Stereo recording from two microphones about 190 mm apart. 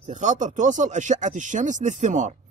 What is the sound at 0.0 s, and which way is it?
A man's voice, 40° right (ahead or behind).